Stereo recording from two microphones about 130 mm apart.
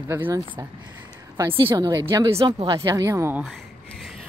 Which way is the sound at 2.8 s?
25° right (ahead or behind).